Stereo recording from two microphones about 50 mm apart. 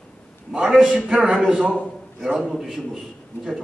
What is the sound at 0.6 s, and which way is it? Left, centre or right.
Speech, centre.